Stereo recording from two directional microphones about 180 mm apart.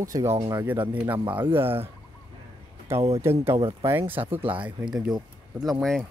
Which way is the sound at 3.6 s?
30° right (ahead or behind).